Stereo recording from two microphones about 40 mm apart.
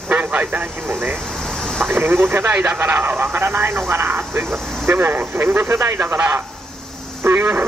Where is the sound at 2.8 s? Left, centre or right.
Right.